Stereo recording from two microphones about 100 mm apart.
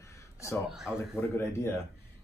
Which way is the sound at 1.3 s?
25° left (ahead or behind).